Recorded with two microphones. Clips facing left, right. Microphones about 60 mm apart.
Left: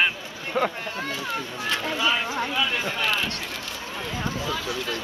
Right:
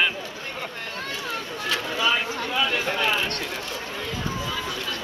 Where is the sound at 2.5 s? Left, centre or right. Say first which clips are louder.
Right 1 dB; centre.